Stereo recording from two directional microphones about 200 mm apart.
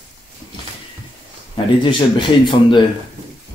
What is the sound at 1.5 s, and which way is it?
Speech, 25° left (ahead or behind).